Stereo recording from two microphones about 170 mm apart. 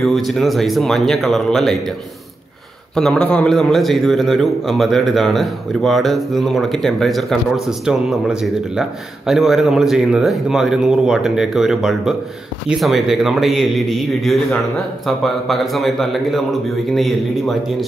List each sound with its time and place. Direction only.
0.0 s a man's voice: centre (ahead or behind)
3.0 s a man's voice: 5° left (ahead or behind)